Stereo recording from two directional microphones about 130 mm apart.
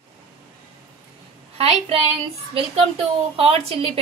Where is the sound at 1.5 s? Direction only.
45° right (ahead or behind).